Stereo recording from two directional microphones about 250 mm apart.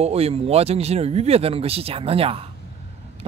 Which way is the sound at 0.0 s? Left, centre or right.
Right.